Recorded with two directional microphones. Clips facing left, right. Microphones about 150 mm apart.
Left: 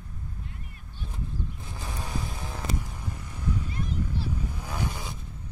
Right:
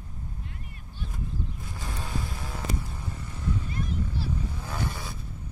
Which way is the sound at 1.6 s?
20° left (ahead or behind).